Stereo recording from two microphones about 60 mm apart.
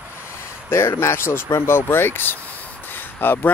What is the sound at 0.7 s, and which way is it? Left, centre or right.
Speech, left.